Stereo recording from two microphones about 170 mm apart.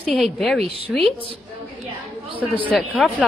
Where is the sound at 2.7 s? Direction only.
Centre (ahead or behind).